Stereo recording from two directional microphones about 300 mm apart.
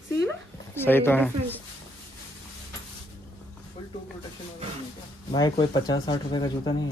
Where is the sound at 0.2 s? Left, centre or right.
Centre.